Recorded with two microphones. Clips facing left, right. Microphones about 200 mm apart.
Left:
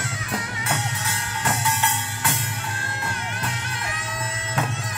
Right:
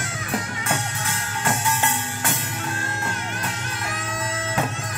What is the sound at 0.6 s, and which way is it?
Music, 50° right (ahead or behind).